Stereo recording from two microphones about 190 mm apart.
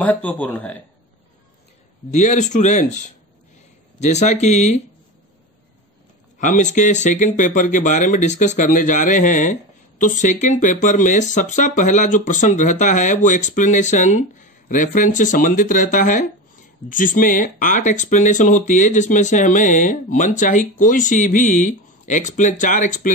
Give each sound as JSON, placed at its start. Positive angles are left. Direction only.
{"t": 0.0, "sound": "speech", "side_deg": 10}
{"t": 2.0, "sound": "speech", "side_deg": 40}
{"t": 6.4, "sound": "speech", "side_deg": 40}